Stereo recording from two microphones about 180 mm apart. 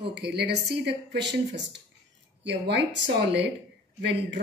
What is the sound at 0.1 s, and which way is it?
A woman's voice, 70° right (ahead or behind).